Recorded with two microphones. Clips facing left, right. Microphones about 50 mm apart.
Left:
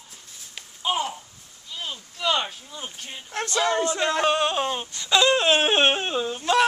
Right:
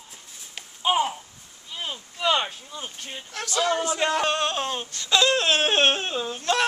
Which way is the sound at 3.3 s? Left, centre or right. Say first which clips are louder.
Left 1 dB; left.